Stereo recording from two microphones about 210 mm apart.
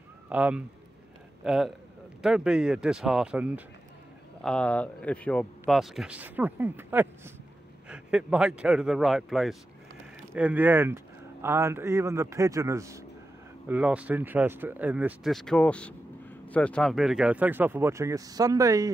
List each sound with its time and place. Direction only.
0.3 s a man's voice: 5° right (ahead or behind)